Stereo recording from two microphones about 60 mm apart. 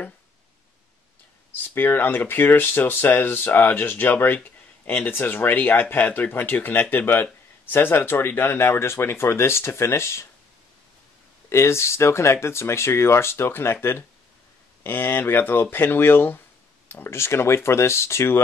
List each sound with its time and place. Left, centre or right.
1.5 s speech: left
11.4 s speech: left